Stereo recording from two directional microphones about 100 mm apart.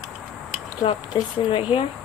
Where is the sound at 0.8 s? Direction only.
65° left (ahead or behind).